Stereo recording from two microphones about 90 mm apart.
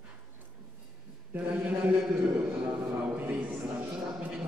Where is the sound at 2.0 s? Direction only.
15° right (ahead or behind).